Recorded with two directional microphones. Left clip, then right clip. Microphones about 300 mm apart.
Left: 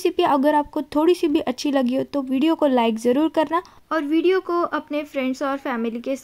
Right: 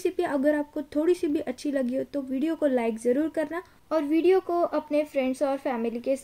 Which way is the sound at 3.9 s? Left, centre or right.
Centre.